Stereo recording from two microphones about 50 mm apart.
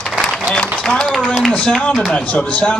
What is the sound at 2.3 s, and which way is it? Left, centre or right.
Speech, left.